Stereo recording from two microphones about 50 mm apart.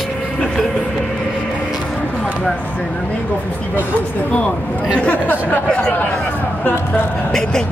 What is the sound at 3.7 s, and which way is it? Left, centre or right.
Speech, left.